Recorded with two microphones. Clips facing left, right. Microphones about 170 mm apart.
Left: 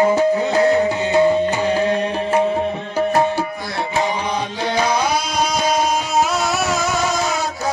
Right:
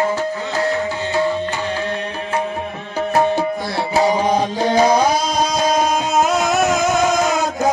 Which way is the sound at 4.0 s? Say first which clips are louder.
Right 6 dB; 40° right (ahead or behind).